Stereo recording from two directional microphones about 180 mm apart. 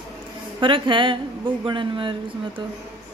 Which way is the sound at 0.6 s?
30° right (ahead or behind).